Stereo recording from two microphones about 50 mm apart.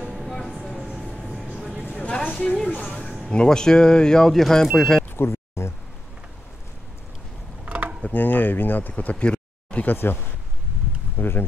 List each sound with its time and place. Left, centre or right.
0.0 s train: centre
0.9 s train: centre
1.5 s vehicle: centre
2.0 s a sound: centre
3.3 s speech: centre
5.1 s a sound: left
7.6 s mechanisms: right
8.0 s speech: left
9.8 s speech: left
11.1 s speech: left